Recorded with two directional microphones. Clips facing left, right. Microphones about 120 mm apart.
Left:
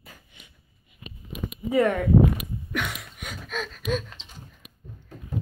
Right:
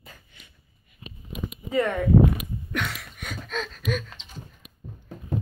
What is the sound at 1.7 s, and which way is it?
Speech, 10° left (ahead or behind).